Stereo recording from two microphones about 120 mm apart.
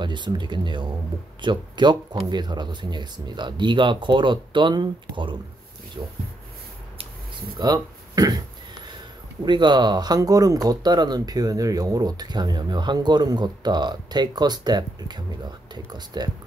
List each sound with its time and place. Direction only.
0.0 s speech: 40° right (ahead or behind)
7.5 s a sound: 35° right (ahead or behind)
9.4 s speech: 40° right (ahead or behind)